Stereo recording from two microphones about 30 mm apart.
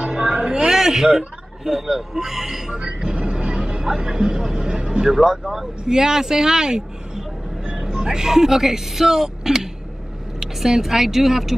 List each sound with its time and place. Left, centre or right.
0.0 s a sound: right
0.7 s a sound: centre
1.0 s speech: right
2.7 s music: right
3.8 s speech: right
5.0 s speech: centre